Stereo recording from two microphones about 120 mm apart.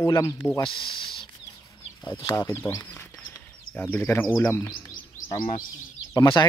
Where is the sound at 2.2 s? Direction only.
20° left (ahead or behind).